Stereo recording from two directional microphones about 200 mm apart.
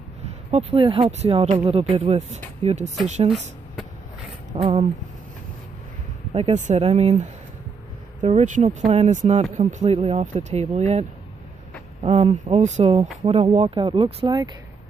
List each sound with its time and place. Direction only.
0.2 s speech: 30° right (ahead or behind)
4.6 s speech: 30° right (ahead or behind)
6.3 s speech: 35° right (ahead or behind)